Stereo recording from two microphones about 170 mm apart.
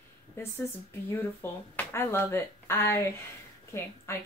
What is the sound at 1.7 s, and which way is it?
Speech, 15° left (ahead or behind).